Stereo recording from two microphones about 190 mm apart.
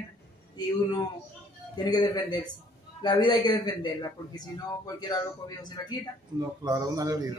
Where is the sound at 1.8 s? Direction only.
20° left (ahead or behind).